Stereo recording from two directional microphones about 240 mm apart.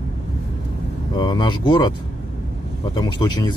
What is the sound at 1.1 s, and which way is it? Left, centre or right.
Speech, centre.